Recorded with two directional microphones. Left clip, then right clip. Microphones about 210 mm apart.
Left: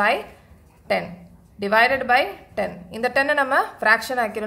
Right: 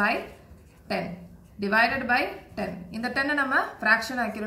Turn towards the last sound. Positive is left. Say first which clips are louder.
# left 4 dB
turn(degrees=50)  # may be behind; listen again after turning